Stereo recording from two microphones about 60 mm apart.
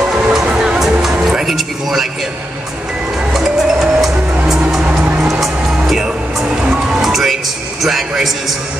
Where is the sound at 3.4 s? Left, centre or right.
Centre.